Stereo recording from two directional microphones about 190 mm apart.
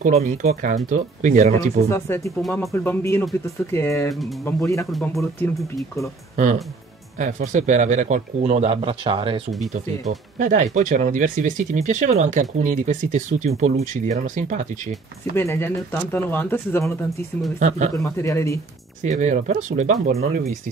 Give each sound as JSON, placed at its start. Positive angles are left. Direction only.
{"t": 0.0, "sound": "speech", "side_deg": -40}
{"t": 1.9, "sound": "speech", "side_deg": 15}
{"t": 2.4, "sound": "speech", "side_deg": 0}
{"t": 2.7, "sound": "speech", "side_deg": 10}
{"t": 4.1, "sound": "speech", "side_deg": 0}
{"t": 4.5, "sound": "speech", "side_deg": 15}
{"t": 6.3, "sound": "speech", "side_deg": -40}
{"t": 9.7, "sound": "speech", "side_deg": -40}
{"t": 15.3, "sound": "speech", "side_deg": 10}
{"t": 17.6, "sound": "speech", "side_deg": -40}
{"t": 17.9, "sound": "speech", "side_deg": 15}
{"t": 19.0, "sound": "speech", "side_deg": -40}